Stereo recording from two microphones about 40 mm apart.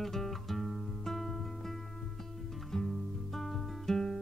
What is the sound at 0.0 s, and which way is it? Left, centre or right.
Guitar, centre.